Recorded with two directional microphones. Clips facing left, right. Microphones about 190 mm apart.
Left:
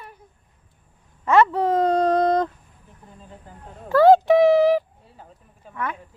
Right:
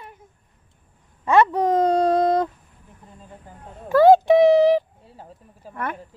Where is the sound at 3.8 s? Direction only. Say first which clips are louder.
Right 1 dB; 15° right (ahead or behind).